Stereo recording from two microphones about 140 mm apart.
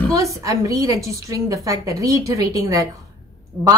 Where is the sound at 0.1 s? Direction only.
25° right (ahead or behind).